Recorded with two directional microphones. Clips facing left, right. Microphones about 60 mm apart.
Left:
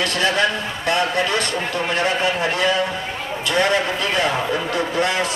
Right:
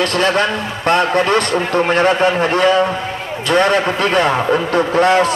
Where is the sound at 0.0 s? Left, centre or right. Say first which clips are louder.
Right 4 dB; right.